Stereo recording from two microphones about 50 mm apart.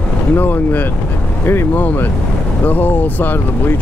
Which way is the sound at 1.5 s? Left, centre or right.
Left.